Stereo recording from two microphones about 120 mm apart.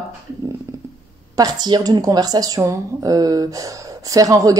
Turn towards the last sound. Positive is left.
turn(degrees=-30)  # may be behind; listen again after turning